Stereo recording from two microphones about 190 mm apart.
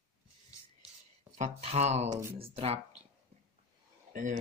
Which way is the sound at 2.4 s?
30° right (ahead or behind).